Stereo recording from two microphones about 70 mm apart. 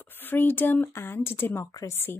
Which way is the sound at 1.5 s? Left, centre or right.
Left.